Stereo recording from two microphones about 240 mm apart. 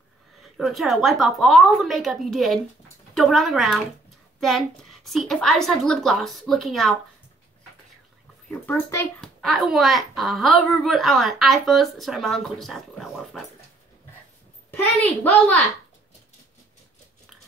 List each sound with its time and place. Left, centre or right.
0.4 s speech: centre
8.5 s speech: centre
14.7 s a sound: centre